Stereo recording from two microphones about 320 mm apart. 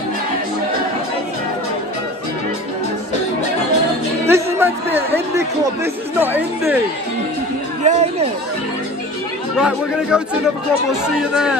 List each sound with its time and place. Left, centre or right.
4.3 s a sound: centre
6.1 s a woman's voice: centre
7.8 s speech: centre
9.6 s speech: centre